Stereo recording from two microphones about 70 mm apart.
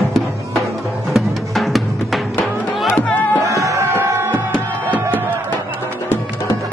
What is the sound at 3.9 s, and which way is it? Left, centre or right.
Music, right.